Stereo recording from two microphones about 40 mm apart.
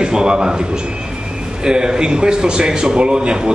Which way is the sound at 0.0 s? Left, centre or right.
Centre.